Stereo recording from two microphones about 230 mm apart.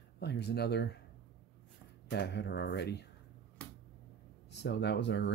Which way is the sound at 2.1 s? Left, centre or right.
Left.